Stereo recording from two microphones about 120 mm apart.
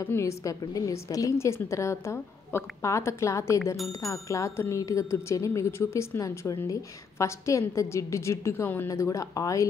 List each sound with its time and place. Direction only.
0.0 s speech: 20° left (ahead or behind)